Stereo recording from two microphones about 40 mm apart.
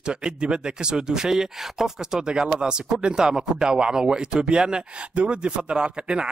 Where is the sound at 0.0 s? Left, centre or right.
Right.